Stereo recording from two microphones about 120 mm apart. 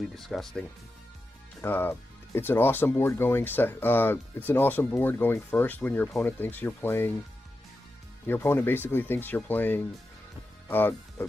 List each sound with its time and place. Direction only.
0.1 s speech: centre (ahead or behind)
1.6 s speech: 20° left (ahead or behind)
8.3 s speech: 20° left (ahead or behind)